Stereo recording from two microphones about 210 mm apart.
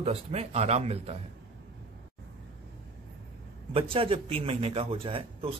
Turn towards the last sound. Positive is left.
turn(degrees=-25)  # may be behind; listen again after turning